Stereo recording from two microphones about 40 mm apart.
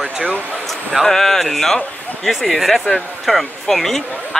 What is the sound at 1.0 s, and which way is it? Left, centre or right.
Speech, centre.